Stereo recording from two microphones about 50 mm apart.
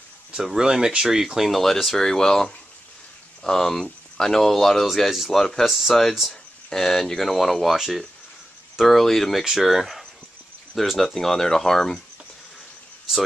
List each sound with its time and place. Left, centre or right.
0.6 s speech: centre
5.7 s speech: centre
9.4 s speech: centre